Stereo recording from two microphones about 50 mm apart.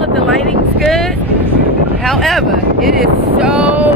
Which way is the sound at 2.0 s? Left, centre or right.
Centre.